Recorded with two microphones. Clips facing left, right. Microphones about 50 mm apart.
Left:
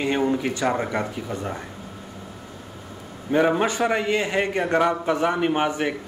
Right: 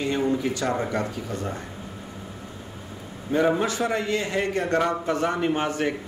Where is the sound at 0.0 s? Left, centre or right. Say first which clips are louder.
Left 2 dB; left.